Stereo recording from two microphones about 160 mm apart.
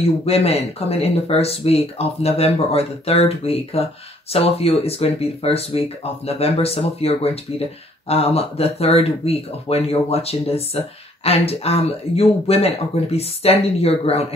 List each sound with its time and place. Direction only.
0.0 s speech: 40° left (ahead or behind)